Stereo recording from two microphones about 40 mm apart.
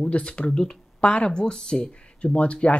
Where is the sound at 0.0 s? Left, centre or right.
Left.